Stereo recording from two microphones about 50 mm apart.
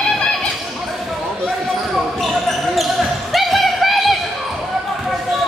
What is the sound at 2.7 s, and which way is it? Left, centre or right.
Basketball bounce, centre.